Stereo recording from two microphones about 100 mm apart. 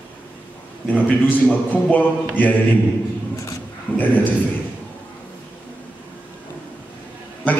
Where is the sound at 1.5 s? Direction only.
15° left (ahead or behind).